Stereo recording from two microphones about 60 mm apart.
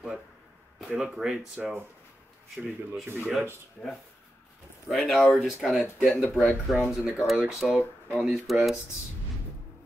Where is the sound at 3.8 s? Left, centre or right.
Centre.